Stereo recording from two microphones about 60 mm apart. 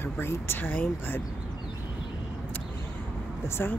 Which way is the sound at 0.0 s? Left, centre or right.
Left.